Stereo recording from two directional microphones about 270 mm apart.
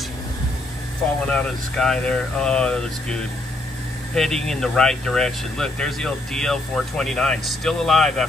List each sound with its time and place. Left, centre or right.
1.2 s speech: centre